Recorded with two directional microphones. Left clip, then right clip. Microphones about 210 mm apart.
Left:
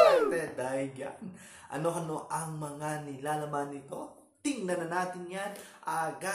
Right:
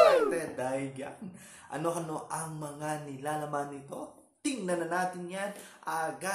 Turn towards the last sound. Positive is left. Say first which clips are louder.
# even
turn(degrees=-5)  # may be behind; listen again after turning